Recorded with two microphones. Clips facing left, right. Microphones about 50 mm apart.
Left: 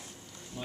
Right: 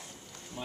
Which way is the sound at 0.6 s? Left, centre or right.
Centre.